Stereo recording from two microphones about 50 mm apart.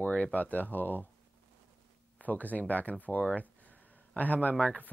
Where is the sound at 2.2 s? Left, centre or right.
Left.